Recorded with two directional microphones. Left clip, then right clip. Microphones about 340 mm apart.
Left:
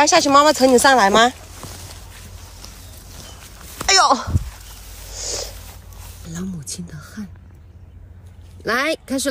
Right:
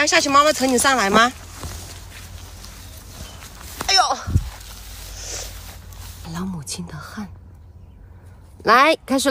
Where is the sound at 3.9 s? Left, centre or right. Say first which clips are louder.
Left 4 dB; centre.